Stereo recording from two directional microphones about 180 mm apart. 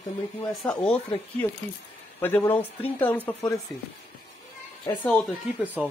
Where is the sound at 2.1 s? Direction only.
10° left (ahead or behind).